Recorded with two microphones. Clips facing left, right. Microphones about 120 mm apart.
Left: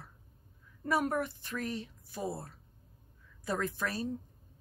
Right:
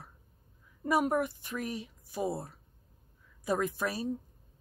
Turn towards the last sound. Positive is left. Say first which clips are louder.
# right 2 dB
turn(degrees=-15)  # may be behind; listen again after turning